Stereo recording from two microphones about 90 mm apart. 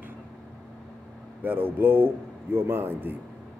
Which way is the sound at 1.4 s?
20° right (ahead or behind).